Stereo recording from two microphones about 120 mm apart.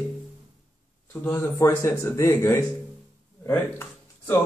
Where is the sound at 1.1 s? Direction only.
20° left (ahead or behind).